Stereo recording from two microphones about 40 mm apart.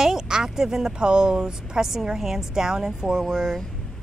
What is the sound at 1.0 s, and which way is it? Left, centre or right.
Speech, right.